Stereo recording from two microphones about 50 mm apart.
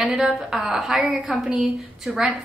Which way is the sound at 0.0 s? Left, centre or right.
Centre.